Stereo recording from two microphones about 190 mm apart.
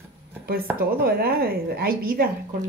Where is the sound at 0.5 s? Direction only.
50° right (ahead or behind).